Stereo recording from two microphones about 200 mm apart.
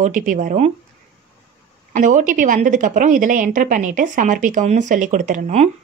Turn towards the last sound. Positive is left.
turn(degrees=-35)  # may be behind; listen again after turning